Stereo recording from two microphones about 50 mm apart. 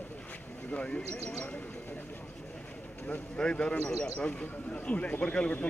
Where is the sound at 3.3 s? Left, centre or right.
Centre.